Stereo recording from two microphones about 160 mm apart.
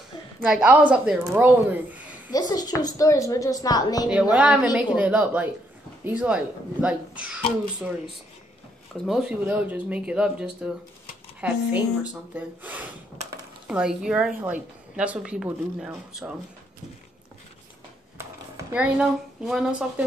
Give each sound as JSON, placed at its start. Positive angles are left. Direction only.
{"t": 0.4, "sound": "speech", "side_deg": -5}
{"t": 2.3, "sound": "a woman's voice", "side_deg": 25}
{"t": 4.1, "sound": "speech", "side_deg": -10}
{"t": 9.0, "sound": "a woman's voice", "side_deg": -5}
{"t": 18.7, "sound": "a woman's voice", "side_deg": -5}